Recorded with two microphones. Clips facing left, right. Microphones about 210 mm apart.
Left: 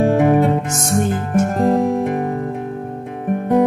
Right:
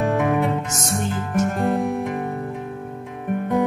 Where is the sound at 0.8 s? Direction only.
50° left (ahead or behind).